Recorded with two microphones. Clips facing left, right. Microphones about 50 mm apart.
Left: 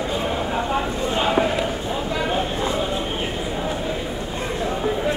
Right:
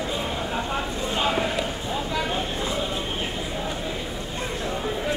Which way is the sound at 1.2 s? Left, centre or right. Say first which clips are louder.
Left 4 dB; centre.